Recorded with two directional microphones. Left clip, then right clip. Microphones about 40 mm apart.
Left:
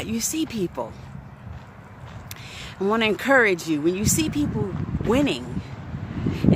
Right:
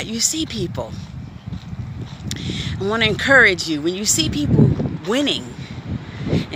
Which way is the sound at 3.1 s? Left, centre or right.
Centre.